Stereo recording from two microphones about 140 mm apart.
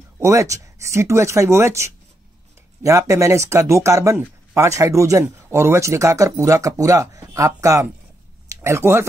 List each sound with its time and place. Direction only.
0.2 s speech: 20° right (ahead or behind)